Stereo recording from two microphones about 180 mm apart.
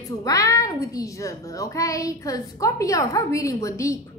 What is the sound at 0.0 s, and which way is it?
A child's voice, 20° left (ahead or behind).